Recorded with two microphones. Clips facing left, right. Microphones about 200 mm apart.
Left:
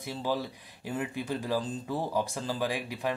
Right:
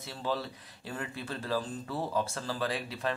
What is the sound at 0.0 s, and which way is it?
Speech, 15° left (ahead or behind).